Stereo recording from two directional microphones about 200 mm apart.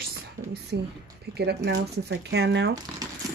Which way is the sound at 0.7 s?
60° right (ahead or behind).